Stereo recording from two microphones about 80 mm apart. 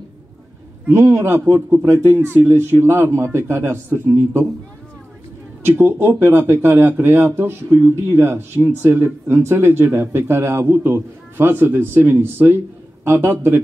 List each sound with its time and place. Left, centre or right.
0.9 s a man's voice: right
5.8 s speech: right